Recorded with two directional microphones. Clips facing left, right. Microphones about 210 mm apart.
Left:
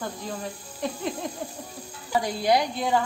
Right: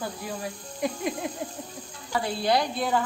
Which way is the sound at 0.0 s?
10° right (ahead or behind).